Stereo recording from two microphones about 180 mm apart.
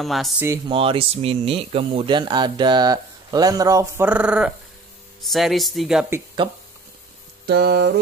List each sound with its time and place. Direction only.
0.0 s speech: centre (ahead or behind)
0.7 s speech: 30° right (ahead or behind); by 6.0 s centre (ahead or behind)
6.4 s speech: 30° right (ahead or behind)
7.4 s music: 65° right (ahead or behind)